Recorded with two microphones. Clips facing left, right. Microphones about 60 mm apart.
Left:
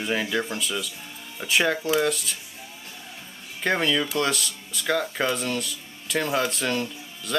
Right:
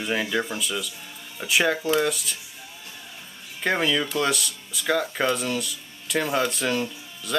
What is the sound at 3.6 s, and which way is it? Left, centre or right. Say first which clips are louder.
Speech: even; centre.